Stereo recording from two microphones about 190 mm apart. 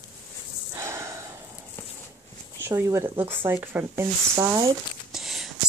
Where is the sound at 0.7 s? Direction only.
15° right (ahead or behind).